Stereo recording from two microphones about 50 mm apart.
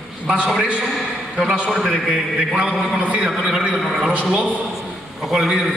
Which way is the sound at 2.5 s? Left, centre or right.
Right.